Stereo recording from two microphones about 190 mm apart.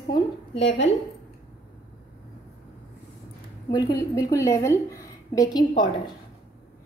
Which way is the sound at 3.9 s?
15° left (ahead or behind).